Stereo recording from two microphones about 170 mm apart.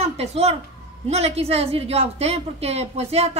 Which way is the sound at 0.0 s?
40° right (ahead or behind).